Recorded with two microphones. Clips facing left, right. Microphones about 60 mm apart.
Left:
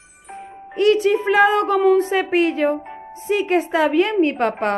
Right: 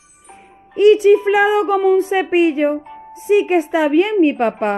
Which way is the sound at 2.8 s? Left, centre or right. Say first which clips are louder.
Left 1 dB; left.